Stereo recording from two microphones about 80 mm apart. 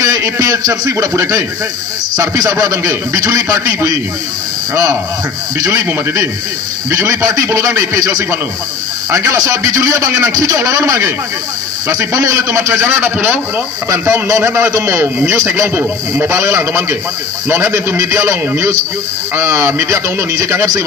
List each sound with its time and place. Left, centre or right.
0.0 s a man's voice: right
5.6 s a man's voice: right
6.9 s a man's voice: right
15.7 s a man's voice: right
16.3 s a man's voice: right